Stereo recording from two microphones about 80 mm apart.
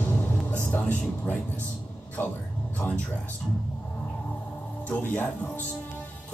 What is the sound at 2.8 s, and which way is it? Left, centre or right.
Speech, centre.